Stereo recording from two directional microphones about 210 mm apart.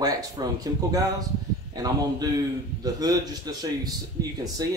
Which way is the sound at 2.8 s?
20° right (ahead or behind).